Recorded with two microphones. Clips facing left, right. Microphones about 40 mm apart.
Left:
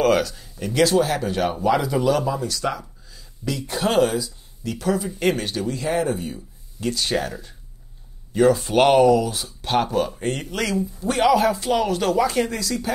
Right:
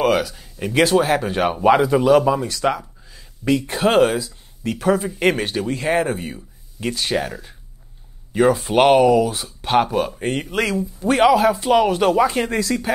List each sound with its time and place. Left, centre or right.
0.0 s speech: centre
0.6 s speech: right
1.8 s speech: right
11.7 s speech: right
12.4 s speech: right